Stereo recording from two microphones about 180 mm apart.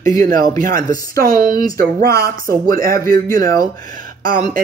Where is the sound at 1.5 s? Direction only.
20° left (ahead or behind).